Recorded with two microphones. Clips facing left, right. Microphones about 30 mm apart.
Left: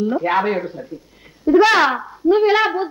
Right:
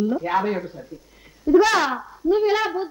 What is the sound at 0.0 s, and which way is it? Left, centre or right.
Speech, left.